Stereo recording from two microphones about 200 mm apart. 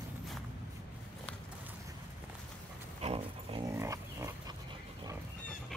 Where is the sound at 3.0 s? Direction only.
30° right (ahead or behind).